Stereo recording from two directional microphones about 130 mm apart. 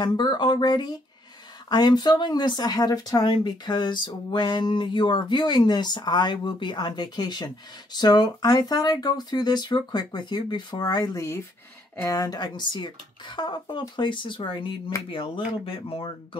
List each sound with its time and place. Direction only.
0.0 s speech: 35° left (ahead or behind)